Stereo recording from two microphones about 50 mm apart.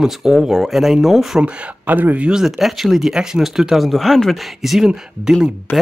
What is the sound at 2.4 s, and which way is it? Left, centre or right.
Speech, centre.